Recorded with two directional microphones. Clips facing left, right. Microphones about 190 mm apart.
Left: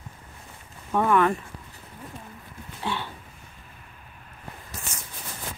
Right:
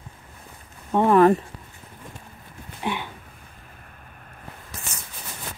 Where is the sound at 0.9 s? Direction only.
30° right (ahead or behind).